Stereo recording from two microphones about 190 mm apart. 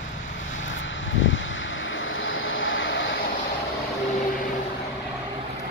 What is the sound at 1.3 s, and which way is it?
Vehicle, 90° left.